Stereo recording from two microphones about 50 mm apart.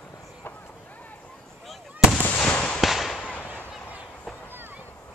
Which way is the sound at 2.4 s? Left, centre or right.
Left.